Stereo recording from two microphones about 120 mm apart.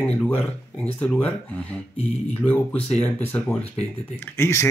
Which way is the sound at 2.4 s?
10° left (ahead or behind).